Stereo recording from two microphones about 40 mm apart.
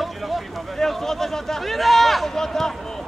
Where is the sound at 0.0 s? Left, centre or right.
Centre.